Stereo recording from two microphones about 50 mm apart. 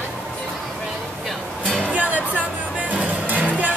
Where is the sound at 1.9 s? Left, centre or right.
Right.